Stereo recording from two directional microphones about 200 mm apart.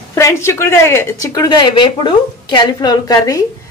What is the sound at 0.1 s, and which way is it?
A woman's voice, 15° left (ahead or behind).